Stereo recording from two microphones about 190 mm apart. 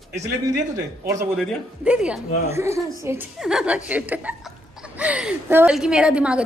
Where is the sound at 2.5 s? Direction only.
15° right (ahead or behind).